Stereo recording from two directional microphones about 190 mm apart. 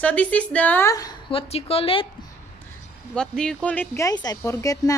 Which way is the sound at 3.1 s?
5° left (ahead or behind).